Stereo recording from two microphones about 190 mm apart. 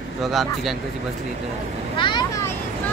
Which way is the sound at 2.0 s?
25° left (ahead or behind).